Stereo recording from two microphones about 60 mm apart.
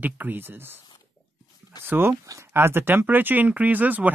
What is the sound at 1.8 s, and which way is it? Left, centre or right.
Speech, right.